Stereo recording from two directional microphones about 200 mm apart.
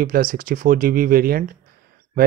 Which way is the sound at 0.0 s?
45° right (ahead or behind).